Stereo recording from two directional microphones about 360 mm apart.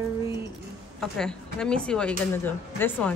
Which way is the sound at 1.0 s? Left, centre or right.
Centre.